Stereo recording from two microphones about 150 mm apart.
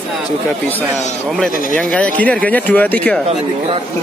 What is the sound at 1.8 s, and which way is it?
Speech, 5° left (ahead or behind).